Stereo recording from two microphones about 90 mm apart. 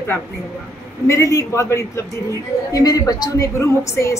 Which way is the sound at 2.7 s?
45° left (ahead or behind).